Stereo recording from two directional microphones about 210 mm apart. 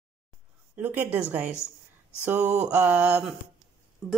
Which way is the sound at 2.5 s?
5° right (ahead or behind).